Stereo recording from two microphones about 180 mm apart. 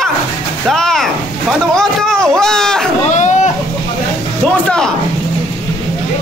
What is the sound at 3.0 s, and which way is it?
Dog, 40° left (ahead or behind).